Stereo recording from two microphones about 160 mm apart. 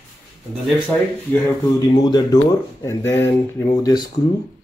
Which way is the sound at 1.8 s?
25° left (ahead or behind).